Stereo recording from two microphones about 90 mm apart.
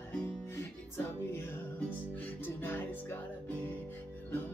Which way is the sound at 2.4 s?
25° left (ahead or behind).